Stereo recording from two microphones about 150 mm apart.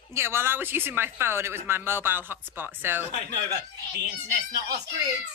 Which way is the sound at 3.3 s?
90° right.